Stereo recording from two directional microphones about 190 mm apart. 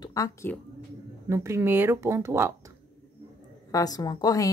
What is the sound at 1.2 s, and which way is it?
Speech, 15° right (ahead or behind).